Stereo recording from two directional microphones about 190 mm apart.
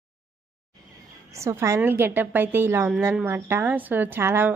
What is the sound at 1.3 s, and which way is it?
A woman's voice, 15° right (ahead or behind).